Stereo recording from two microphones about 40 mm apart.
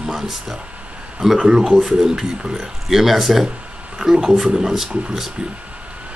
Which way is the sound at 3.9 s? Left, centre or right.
Centre.